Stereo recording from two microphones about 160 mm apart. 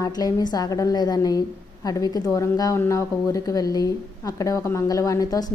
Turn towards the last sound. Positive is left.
turn(degrees=25)  # may be behind; listen again after turning